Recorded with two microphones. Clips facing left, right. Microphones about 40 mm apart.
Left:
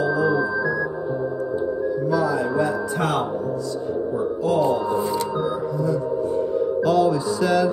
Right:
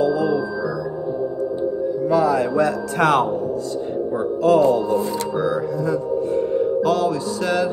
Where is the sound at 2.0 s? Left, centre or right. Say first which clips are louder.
Right 5 dB; right.